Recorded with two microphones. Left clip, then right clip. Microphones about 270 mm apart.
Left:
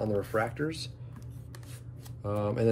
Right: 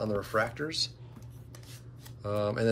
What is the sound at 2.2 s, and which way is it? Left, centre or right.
Speech, centre.